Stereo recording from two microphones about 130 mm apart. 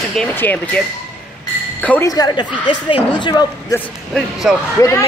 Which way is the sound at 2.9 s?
40° left (ahead or behind).